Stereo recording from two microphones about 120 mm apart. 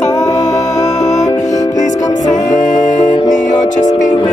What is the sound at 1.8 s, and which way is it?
Music, 90° left.